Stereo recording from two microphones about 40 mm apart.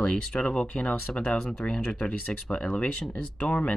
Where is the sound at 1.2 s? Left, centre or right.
Left.